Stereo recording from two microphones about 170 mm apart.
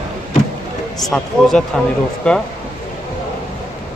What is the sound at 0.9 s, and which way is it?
Speech, 5° left (ahead or behind).